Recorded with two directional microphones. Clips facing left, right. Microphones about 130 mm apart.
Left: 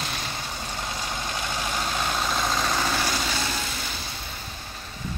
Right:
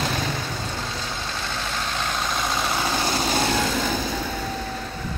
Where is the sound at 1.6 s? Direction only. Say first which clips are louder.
Left 1 dB; 10° left (ahead or behind); by 3.0 s 15° right (ahead or behind).